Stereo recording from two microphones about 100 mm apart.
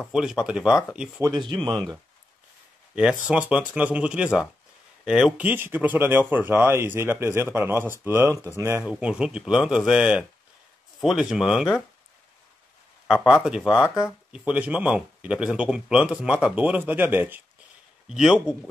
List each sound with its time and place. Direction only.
0.1 s speech: 5° right (ahead or behind)
1.4 s speech: 50° right (ahead or behind)
3.0 s speech: 5° right (ahead or behind)
5.4 s speech: 20° right (ahead or behind)
8.8 s speech: 10° right (ahead or behind)
13.1 s speech: 5° right (ahead or behind)
13.6 s speech: 5° left (ahead or behind)
13.9 s speech: 10° right (ahead or behind)
18.0 s speech: 5° right (ahead or behind)